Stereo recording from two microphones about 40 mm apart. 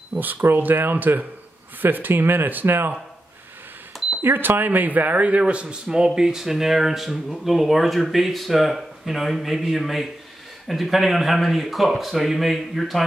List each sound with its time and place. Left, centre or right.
0.2 s speech: right
4.2 s speech: right
4.6 s speech: right
5.4 s a man's voice: right
5.9 s speech: centre